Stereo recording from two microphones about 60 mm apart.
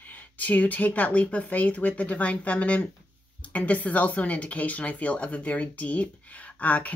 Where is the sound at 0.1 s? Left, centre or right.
Left.